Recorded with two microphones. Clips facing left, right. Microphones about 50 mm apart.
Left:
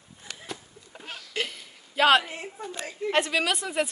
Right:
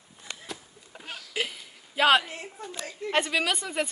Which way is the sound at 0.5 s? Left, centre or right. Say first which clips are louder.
Left 1 dB; centre.